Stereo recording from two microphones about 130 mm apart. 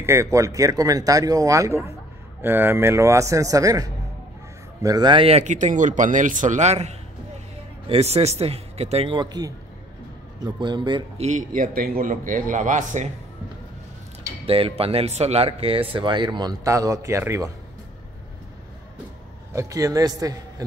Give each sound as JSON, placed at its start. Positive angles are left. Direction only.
{"t": 0.0, "sound": "speech", "side_deg": -20}
{"t": 5.4, "sound": "a man's voice", "side_deg": -70}
{"t": 11.1, "sound": "a man's voice", "side_deg": -70}
{"t": 14.4, "sound": "speech", "side_deg": -45}
{"t": 19.5, "sound": "speech", "side_deg": -25}